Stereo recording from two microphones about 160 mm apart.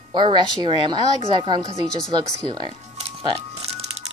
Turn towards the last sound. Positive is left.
turn(degrees=-30)  # may be behind; listen again after turning